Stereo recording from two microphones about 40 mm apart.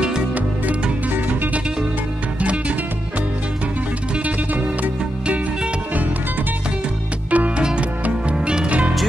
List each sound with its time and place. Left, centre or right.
2.4 s music: right
7.2 s music: right